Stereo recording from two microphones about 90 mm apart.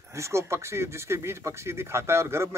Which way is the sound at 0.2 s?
30° right (ahead or behind).